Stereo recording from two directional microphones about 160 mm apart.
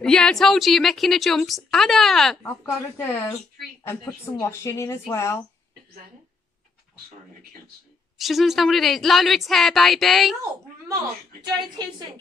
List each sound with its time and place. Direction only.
0.0 s a woman's voice: 5° left (ahead or behind)
2.4 s speech: 15° left (ahead or behind)
8.2 s a woman's voice: centre (ahead or behind)
11.8 s a woman's voice: 25° right (ahead or behind)